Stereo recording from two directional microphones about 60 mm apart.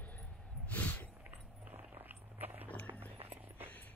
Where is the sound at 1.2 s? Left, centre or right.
Right.